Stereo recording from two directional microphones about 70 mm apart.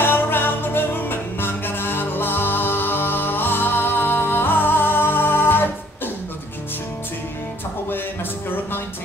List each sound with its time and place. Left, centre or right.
0.0 s music: left